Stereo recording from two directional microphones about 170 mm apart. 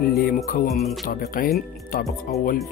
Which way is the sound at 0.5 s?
60° left (ahead or behind).